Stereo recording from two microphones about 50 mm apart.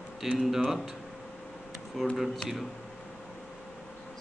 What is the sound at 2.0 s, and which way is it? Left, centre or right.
Speech, centre.